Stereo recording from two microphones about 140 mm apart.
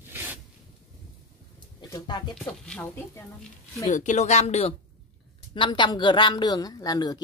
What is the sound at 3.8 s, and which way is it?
Speech, 60° left (ahead or behind).